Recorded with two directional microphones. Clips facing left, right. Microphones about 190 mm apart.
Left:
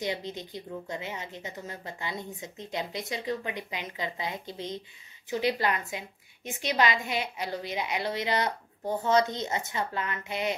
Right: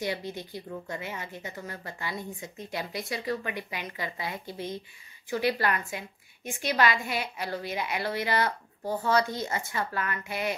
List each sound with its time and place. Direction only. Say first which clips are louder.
0.0 s a woman's voice: even; 20° left (ahead or behind)